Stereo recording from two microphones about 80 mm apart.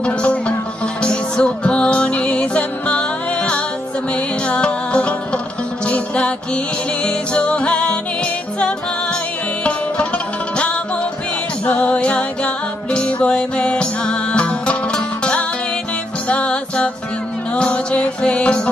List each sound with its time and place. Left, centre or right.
0.0 s music: centre